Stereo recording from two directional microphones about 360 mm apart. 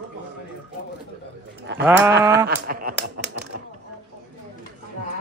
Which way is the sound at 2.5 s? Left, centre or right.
Right.